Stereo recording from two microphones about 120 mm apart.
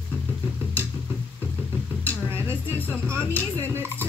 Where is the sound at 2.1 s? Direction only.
20° right (ahead or behind).